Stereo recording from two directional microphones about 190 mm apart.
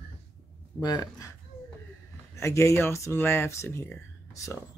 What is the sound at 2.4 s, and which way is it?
Speech, 15° left (ahead or behind).